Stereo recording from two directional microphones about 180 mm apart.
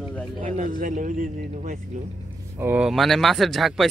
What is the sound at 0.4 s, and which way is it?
Speech, 45° right (ahead or behind).